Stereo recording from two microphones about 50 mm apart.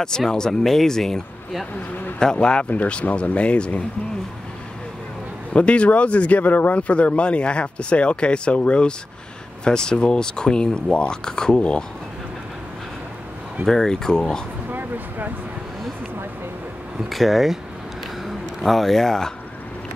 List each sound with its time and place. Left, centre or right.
0.0 s speech: centre
5.5 s speech: left
13.7 s speech: centre
14.7 s a sound: right
17.1 s speech: centre